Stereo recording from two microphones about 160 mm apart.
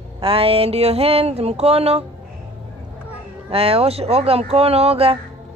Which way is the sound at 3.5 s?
35° right (ahead or behind).